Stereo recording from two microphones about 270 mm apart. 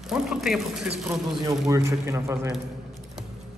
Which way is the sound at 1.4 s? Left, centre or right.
Centre.